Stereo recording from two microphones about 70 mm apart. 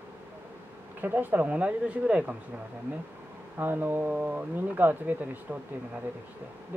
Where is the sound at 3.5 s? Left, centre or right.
Right.